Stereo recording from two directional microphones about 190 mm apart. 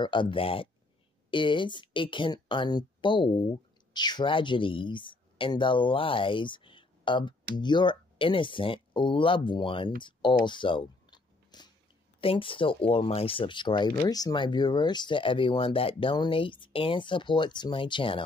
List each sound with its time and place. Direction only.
0.0 s speech: 25° left (ahead or behind)
10.4 s a sound: 25° left (ahead or behind)
12.2 s speech: 30° left (ahead or behind)